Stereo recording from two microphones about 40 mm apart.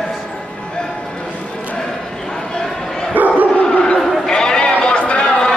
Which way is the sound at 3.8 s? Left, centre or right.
Left.